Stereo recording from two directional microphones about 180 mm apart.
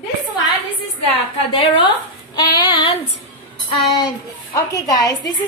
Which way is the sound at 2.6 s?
25° left (ahead or behind).